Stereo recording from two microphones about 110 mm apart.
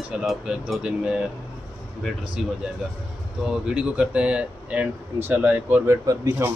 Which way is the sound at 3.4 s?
10° right (ahead or behind).